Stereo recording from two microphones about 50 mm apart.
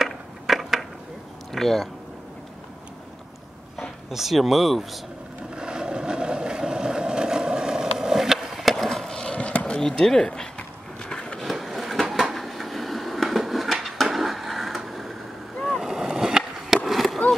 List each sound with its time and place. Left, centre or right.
0.0 s crushing: centre
1.5 s speech: centre
4.1 s speech: centre
5.5 s vehicle: centre; by 9.8 s left
9.8 s speech: centre
11.0 s a sound: centre
11.3 s a sound: centre
15.5 s boat: centre
15.8 s skateboard: centre
16.8 s skateboard: centre